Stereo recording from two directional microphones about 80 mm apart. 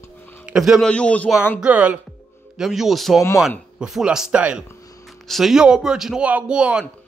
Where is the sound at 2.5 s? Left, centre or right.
Centre.